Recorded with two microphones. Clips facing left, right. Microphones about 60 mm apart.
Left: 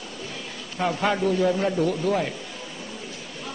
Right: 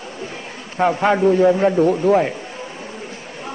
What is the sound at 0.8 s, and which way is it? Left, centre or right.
Speech, right.